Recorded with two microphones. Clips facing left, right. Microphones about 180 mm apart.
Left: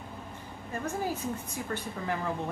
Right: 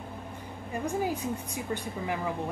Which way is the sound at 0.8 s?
15° right (ahead or behind).